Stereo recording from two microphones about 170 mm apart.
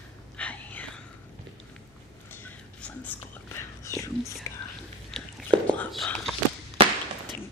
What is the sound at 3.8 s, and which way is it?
Whispering, 20° left (ahead or behind).